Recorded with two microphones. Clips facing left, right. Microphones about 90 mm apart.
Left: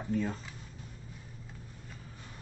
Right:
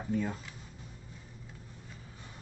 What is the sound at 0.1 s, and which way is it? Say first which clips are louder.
Speech: even; 5° right (ahead or behind).